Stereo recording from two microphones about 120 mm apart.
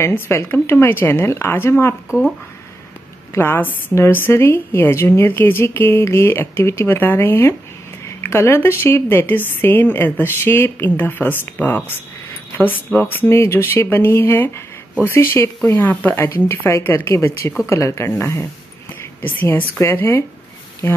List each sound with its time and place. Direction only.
0.0 s a woman's voice: 20° left (ahead or behind)
2.0 s speech: 5° right (ahead or behind)
3.3 s a woman's voice: 20° left (ahead or behind)